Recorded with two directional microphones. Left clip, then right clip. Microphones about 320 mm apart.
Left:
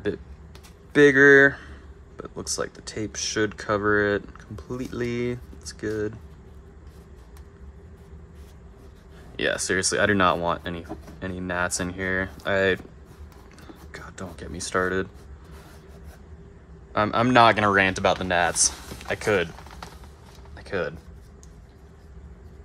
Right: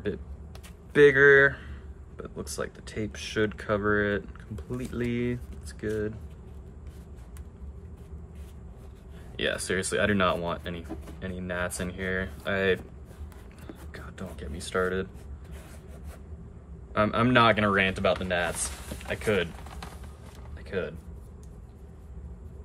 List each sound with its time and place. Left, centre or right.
0.9 s speech: centre
9.4 s speech: centre
13.9 s speech: centre
16.9 s speech: centre
20.5 s a sound: centre